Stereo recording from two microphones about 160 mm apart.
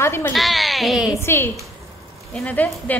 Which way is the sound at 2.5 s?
10° left (ahead or behind).